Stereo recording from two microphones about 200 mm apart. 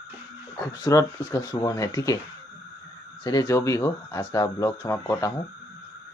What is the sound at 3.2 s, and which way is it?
Speech, 15° left (ahead or behind).